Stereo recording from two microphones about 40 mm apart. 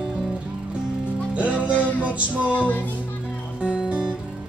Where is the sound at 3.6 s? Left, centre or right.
Right.